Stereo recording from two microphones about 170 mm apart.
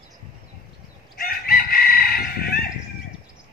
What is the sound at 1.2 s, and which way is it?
Chicken, 60° left (ahead or behind).